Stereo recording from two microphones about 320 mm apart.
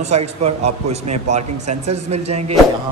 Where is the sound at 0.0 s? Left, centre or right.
Right.